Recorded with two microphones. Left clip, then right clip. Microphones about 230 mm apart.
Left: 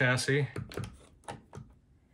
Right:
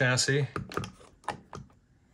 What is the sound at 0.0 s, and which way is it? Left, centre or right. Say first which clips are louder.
Speech: right 2 dB; centre.